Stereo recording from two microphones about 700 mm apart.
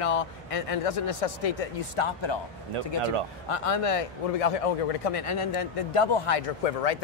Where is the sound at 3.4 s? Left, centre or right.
Left.